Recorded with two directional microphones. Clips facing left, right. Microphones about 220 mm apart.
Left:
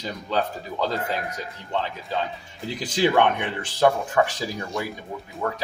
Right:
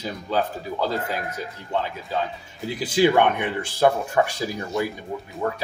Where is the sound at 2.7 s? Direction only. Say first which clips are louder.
Right 2 dB; 10° right (ahead or behind).